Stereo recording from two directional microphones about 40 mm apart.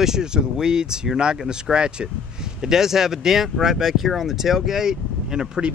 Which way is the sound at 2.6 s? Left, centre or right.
Centre.